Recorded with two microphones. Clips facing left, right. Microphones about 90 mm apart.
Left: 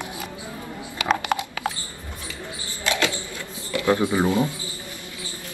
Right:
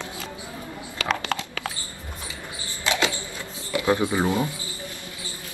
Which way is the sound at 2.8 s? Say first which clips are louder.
Even; 25° right (ahead or behind).